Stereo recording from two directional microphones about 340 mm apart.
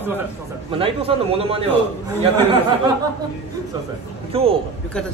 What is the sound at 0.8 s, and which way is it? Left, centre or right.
Speech, centre.